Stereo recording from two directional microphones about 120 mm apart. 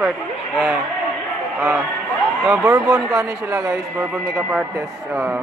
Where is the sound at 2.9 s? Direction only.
25° right (ahead or behind).